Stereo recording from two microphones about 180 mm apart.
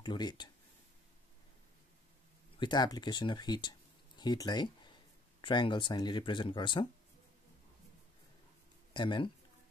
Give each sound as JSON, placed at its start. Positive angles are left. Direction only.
{"t": 0.0, "sound": "speech", "side_deg": 25}
{"t": 2.6, "sound": "speech", "side_deg": 25}
{"t": 8.9, "sound": "speech", "side_deg": 25}